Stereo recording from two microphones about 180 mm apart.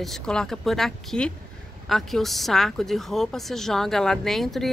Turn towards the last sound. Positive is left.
turn(degrees=0)  # may be behind; listen again after turning